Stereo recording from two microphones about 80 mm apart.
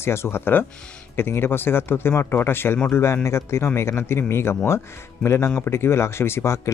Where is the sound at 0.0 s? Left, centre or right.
Left.